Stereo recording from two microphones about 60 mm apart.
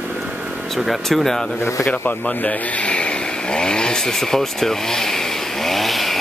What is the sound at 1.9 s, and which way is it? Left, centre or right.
Speech, left.